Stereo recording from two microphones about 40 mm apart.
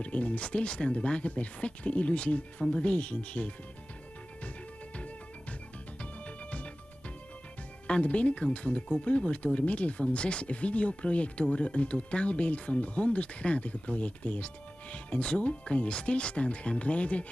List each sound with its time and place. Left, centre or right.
0.0 s speech: left
4.9 s music: left
7.8 s speech: left